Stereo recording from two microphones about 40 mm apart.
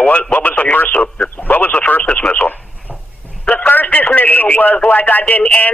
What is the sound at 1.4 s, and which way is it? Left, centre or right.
A man's voice, left.